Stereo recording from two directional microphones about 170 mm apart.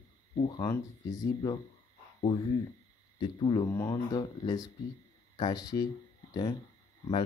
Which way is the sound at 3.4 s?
20° left (ahead or behind).